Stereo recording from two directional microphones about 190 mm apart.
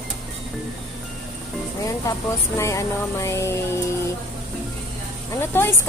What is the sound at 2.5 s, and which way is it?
Music, 15° left (ahead or behind).